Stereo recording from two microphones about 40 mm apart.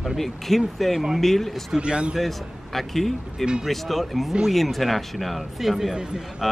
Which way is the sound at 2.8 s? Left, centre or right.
Centre.